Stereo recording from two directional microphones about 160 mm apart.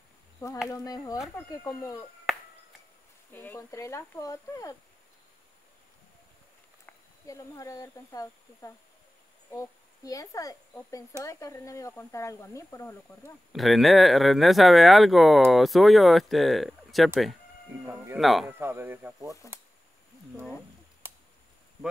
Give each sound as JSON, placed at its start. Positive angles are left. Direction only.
{"t": 0.7, "sound": "speech", "side_deg": 20}
{"t": 3.3, "sound": "speech", "side_deg": 10}
{"t": 6.9, "sound": "speech", "side_deg": 20}
{"t": 13.5, "sound": "speech", "side_deg": 0}
{"t": 18.6, "sound": "speech", "side_deg": -15}